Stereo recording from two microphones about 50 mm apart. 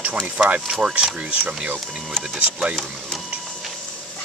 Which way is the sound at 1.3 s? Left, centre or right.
Right.